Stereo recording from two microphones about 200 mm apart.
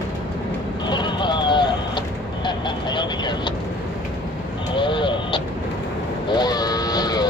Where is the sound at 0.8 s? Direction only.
20° left (ahead or behind).